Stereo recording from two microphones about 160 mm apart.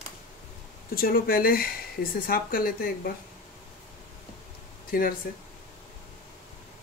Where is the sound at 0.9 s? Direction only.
65° left (ahead or behind).